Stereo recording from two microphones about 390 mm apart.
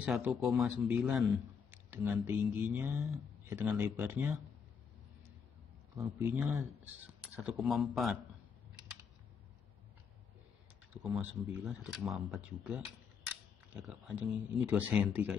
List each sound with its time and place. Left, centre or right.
0.0 s a man's voice: centre
5.9 s a man's voice: centre
10.9 s a sound: centre
11.2 s a man's voice: centre